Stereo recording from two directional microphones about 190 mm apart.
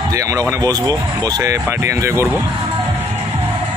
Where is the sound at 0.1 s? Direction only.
15° right (ahead or behind).